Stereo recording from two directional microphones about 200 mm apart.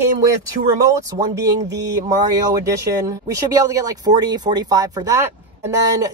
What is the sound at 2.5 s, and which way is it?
Speech, 15° right (ahead or behind).